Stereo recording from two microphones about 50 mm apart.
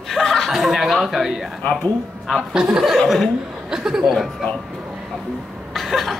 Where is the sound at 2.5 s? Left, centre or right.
Centre.